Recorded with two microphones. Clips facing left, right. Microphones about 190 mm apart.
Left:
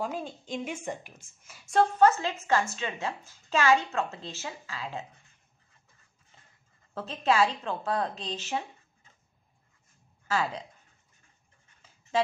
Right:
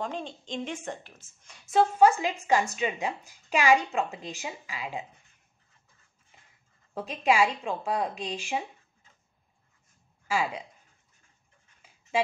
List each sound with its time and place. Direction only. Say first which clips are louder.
0.0 s a woman's voice: left 1 dB; 5° left (ahead or behind); by 5.0 s 15° right (ahead or behind)
6.9 s a woman's voice: right 1 dB; 15° right (ahead or behind)
10.2 s speech: right 1 dB; 10° right (ahead or behind)